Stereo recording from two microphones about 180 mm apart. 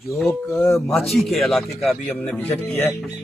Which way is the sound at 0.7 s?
Centre (ahead or behind).